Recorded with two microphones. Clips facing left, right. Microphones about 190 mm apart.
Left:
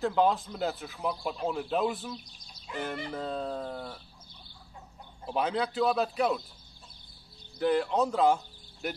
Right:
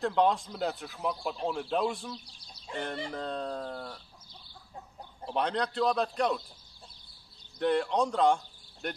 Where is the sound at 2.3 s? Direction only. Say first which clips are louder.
Right 1 dB; 30° right (ahead or behind).